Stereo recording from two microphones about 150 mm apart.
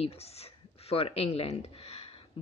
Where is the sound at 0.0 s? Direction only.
40° left (ahead or behind).